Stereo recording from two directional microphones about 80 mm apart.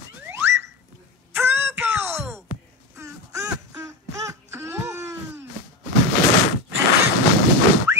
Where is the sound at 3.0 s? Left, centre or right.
Right.